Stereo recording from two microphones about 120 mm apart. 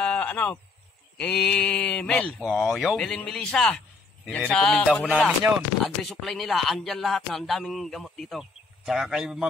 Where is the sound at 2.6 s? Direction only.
5° right (ahead or behind).